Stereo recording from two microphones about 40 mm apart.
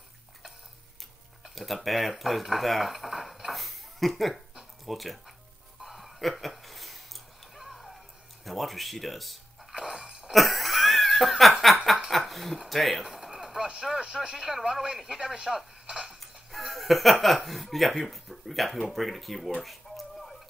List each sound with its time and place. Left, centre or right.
1.5 s speech: centre
5.8 s a sound: centre
8.5 s speech: centre
9.8 s chink: centre
10.3 s laughter: centre
12.3 s speech: centre
13.0 s a sound: centre
13.7 s speech: centre
19.6 s a sound: centre